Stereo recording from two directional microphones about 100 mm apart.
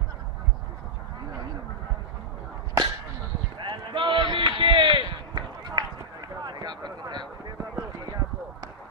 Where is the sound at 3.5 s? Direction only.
50° right (ahead or behind).